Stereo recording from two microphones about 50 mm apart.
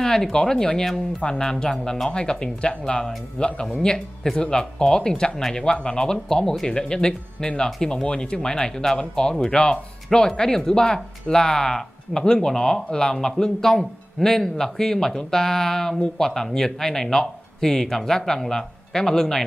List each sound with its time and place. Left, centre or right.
0.0 s speech: centre